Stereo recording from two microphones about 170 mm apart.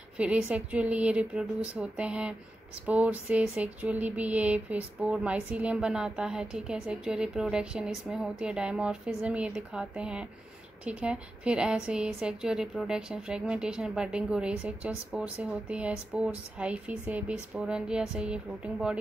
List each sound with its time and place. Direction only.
0.2 s a woman's voice: 5° right (ahead or behind)